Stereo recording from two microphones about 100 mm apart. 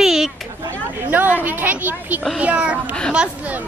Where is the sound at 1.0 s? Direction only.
20° right (ahead or behind).